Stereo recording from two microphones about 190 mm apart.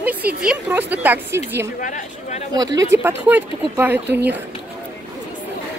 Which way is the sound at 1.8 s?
40° left (ahead or behind).